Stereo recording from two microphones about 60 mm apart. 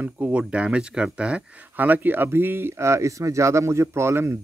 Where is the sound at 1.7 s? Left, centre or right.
Right.